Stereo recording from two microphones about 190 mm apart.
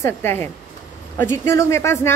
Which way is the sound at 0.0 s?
10° left (ahead or behind).